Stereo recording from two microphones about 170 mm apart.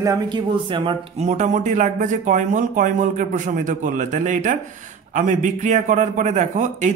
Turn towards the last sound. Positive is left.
turn(degrees=-45)  # may be behind; listen again after turning